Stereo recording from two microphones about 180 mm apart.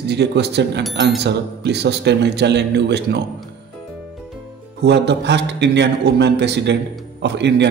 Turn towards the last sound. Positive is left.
turn(degrees=-75)  # may be behind; listen again after turning